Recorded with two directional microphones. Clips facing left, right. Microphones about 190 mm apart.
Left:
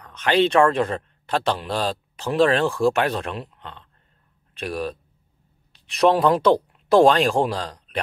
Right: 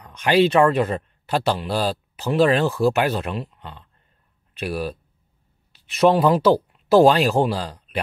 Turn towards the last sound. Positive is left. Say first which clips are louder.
# right 2 dB
turn(degrees=-5)  # may be behind; listen again after turning